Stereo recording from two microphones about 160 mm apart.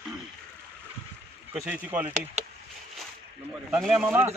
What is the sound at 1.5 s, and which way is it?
Speech, 5° right (ahead or behind).